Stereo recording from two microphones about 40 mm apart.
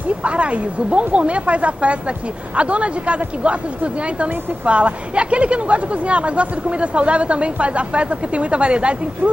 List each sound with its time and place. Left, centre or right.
0.2 s speech: right